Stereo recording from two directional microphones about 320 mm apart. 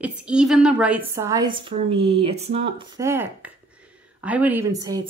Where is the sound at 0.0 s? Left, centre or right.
Centre.